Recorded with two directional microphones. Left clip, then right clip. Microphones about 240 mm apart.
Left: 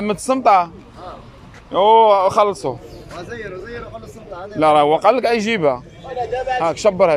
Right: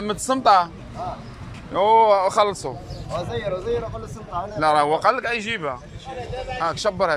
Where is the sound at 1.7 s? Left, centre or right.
Centre.